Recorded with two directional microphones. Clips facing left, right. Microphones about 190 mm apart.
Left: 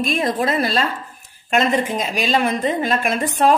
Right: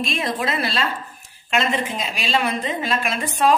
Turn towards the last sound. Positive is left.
turn(degrees=50)  # may be behind; listen again after turning